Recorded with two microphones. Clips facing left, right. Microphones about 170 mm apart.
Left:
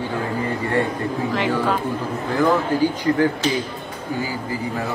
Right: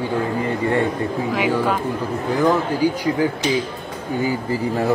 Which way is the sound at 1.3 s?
10° right (ahead or behind).